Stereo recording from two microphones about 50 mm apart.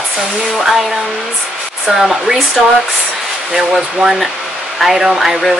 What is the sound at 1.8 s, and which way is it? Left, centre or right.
Speech, centre.